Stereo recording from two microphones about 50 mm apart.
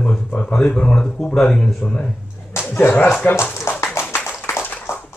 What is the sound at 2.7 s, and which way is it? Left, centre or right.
Speech, left.